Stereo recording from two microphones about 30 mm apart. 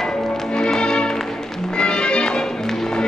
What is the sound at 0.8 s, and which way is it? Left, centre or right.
Music, left.